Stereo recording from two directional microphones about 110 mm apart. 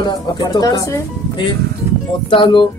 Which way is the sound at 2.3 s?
50° left (ahead or behind).